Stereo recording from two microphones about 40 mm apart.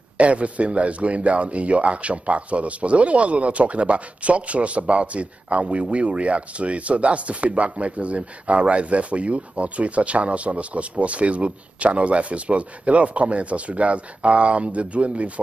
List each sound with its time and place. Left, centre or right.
0.2 s speech: right